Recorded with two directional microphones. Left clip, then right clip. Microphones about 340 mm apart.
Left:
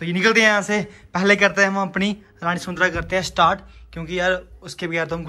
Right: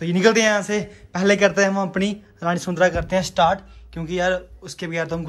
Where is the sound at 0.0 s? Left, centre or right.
Centre.